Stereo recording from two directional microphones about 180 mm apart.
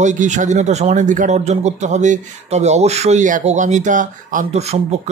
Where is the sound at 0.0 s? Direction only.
45° right (ahead or behind).